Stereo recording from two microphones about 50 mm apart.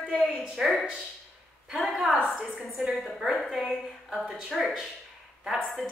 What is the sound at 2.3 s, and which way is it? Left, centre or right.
A woman's voice, centre.